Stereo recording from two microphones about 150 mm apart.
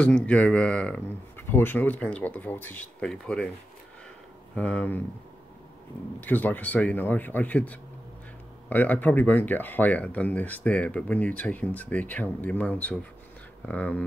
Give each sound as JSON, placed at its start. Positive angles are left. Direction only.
{"t": 0.0, "sound": "speech", "side_deg": 10}
{"t": 4.6, "sound": "speech", "side_deg": 10}
{"t": 6.2, "sound": "speech", "side_deg": 10}